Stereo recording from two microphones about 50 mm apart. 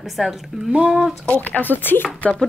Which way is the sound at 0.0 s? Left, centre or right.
Centre.